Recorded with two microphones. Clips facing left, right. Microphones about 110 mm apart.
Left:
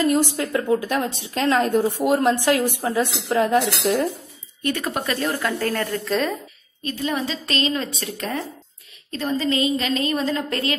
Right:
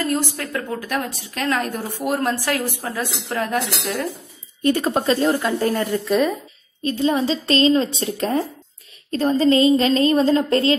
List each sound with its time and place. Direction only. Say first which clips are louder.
0.0 s a woman's voice: left 3 dB; 15° left (ahead or behind)
4.6 s speech: right 6 dB; 30° right (ahead or behind); by 6.3 s 10° right (ahead or behind)
6.8 s speech: right 6 dB; 30° right (ahead or behind)